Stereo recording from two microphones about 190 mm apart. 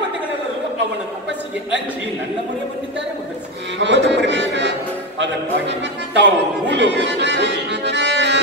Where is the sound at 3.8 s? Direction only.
70° right (ahead or behind).